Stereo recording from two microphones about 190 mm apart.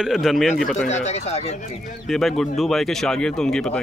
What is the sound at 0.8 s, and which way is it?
Speech, 35° left (ahead or behind).